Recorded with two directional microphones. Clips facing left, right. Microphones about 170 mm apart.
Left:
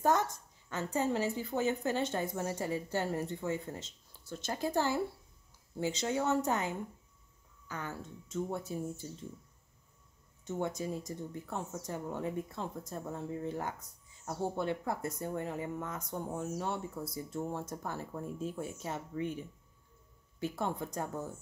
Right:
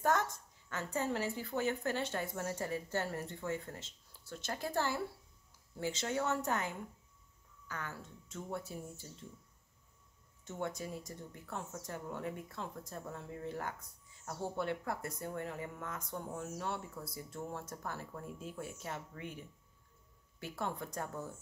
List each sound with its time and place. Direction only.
0.7 s speech: 20° left (ahead or behind)
10.4 s speech: 20° left (ahead or behind)
20.3 s speech: 20° left (ahead or behind)